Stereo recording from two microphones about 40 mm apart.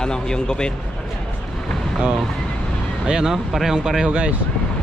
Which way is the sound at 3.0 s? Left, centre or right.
Centre.